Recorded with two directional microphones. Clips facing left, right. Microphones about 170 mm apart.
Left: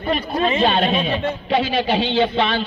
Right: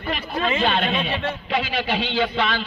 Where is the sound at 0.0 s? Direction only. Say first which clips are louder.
Left 5 dB; 30° left (ahead or behind).